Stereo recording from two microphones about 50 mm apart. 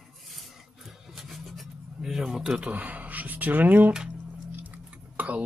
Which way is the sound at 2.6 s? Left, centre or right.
Right.